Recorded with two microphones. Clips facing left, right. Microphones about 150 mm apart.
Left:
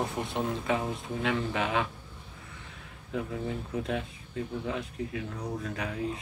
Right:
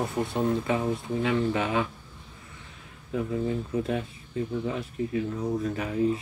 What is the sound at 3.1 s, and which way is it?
Speech, centre (ahead or behind).